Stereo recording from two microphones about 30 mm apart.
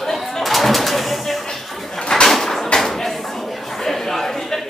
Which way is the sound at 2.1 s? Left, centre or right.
Centre.